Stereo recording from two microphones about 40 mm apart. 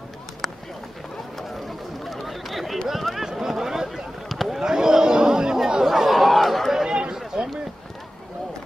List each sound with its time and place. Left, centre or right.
1.7 s chatter: centre
2.9 s speech: centre
3.3 s a sound: centre
4.3 s vehicle: centre
4.6 s chatter: centre
5.9 s chatter: centre
7.3 s a sound: centre